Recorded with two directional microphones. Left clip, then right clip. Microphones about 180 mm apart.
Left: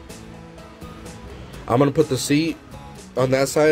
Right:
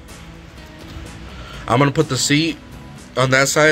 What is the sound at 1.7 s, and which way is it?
Speech, 20° left (ahead or behind).